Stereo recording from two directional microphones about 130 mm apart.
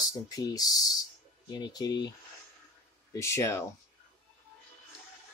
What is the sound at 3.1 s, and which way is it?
Speech, 20° left (ahead or behind).